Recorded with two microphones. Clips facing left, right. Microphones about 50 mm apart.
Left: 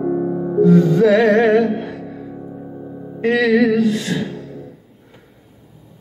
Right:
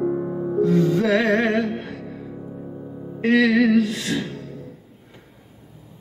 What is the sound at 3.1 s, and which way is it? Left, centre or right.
Music, centre.